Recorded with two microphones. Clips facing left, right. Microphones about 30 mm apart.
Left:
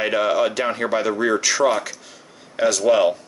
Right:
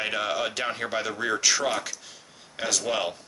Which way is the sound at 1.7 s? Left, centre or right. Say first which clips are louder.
Left 7 dB; centre.